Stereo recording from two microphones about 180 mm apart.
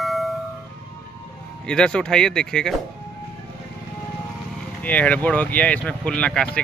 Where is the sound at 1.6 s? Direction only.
5° left (ahead or behind).